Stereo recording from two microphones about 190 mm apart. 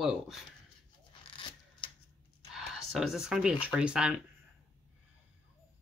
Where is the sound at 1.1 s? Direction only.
25° left (ahead or behind).